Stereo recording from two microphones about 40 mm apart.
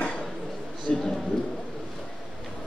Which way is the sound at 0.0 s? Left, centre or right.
Left.